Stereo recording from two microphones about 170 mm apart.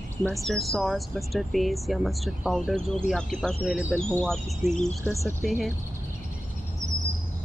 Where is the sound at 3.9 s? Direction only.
5° left (ahead or behind).